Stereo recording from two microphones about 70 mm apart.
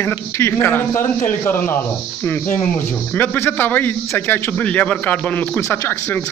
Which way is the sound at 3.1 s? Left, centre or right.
Left.